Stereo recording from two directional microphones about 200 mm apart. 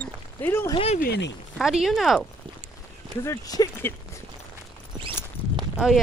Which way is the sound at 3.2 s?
20° left (ahead or behind).